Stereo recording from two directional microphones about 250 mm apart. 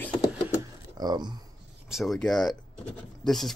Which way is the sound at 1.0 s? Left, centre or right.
Centre.